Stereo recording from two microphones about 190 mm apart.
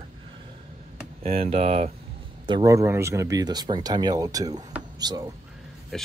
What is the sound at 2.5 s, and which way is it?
Speech, 20° right (ahead or behind).